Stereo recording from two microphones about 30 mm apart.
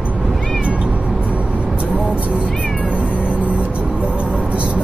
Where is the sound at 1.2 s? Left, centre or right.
Right.